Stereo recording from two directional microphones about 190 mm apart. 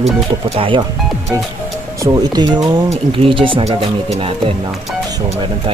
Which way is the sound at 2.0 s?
20° right (ahead or behind).